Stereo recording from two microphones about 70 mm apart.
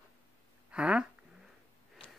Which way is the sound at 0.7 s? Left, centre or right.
Centre.